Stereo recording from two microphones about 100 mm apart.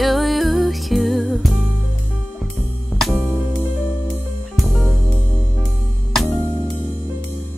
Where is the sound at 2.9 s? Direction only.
Centre (ahead or behind).